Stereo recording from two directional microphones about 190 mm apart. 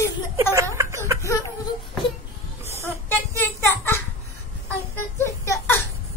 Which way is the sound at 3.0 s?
15° left (ahead or behind).